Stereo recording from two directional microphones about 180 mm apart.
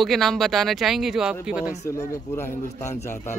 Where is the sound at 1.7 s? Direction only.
40° left (ahead or behind).